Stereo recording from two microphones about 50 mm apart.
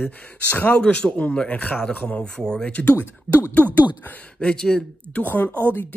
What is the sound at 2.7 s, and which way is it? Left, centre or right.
Speech, left.